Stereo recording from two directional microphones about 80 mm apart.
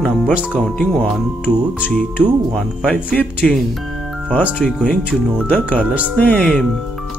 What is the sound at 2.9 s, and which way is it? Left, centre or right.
Mantra, centre.